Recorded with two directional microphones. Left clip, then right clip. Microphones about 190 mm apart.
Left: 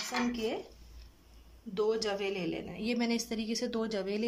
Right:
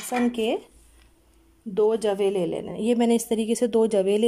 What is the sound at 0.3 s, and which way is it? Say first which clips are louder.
Speech: right 10 dB; 50° right (ahead or behind).